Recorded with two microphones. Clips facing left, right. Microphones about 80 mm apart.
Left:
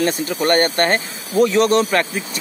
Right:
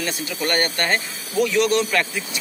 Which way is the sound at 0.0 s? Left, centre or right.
Left.